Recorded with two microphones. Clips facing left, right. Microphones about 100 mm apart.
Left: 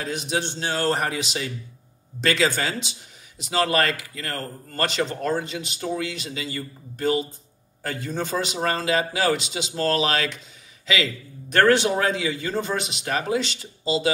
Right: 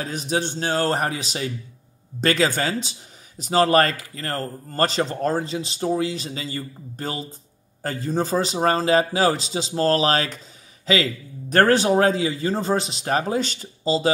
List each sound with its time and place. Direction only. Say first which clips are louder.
0.0 s speech: right 2 dB; 40° right (ahead or behind)